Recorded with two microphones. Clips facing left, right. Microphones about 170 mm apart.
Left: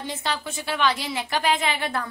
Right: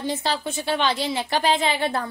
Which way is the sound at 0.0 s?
35° right (ahead or behind).